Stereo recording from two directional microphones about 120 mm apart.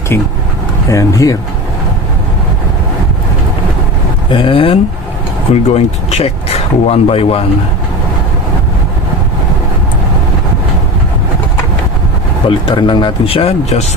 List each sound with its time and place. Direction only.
0.8 s speech: 25° left (ahead or behind)
4.3 s speech: 45° left (ahead or behind)
5.5 s speech: 60° left (ahead or behind)
12.4 s speech: 45° left (ahead or behind); by 13.8 s 60° left (ahead or behind)